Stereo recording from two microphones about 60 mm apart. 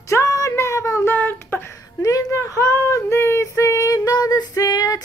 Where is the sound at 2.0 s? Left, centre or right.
Left.